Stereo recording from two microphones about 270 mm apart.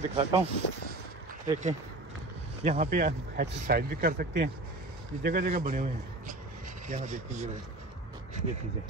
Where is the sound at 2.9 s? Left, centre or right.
Right.